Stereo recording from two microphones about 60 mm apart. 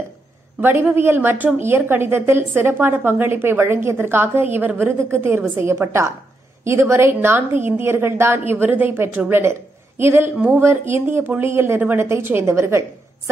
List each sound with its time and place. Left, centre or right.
0.6 s a woman's voice: right
4.9 s a woman's voice: right